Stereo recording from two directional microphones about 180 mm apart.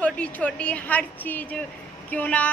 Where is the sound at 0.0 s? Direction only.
5° left (ahead or behind).